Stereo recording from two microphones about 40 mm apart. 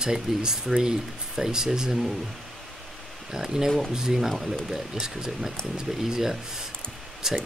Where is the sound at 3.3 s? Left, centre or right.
Centre.